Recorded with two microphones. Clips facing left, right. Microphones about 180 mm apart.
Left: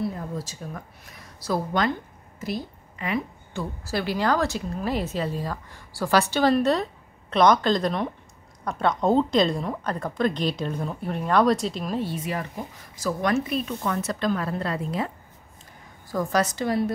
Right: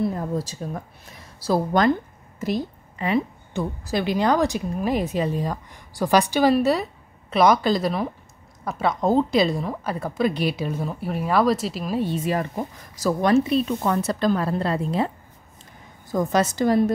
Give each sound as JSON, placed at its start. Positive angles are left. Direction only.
{"t": 0.5, "sound": "a woman's voice", "side_deg": -30}
{"t": 12.0, "sound": "a woman's voice", "side_deg": -20}
{"t": 12.9, "sound": "a woman's voice", "side_deg": -35}
{"t": 16.1, "sound": "a woman's voice", "side_deg": -20}
{"t": 16.5, "sound": "a woman's voice", "side_deg": -40}